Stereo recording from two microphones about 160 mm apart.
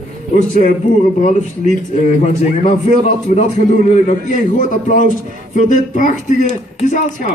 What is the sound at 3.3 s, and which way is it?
A man's voice, 50° left (ahead or behind).